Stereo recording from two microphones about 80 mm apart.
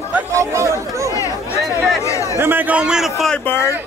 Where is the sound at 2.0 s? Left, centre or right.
Left.